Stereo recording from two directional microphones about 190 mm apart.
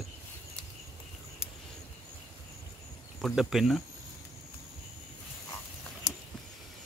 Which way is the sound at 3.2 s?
Centre (ahead or behind).